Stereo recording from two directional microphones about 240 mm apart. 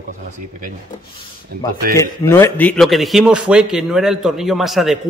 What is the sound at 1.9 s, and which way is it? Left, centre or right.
Speech, centre.